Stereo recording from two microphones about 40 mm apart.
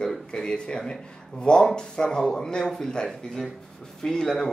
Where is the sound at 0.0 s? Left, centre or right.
Left.